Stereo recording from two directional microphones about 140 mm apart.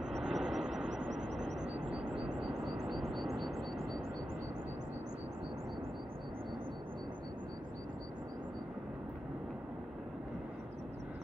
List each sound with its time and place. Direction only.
0.0 s vehicle: 5° right (ahead or behind)